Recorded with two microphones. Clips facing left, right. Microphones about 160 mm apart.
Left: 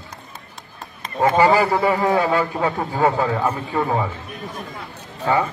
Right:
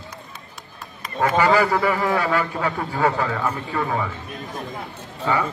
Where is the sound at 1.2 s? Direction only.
20° left (ahead or behind).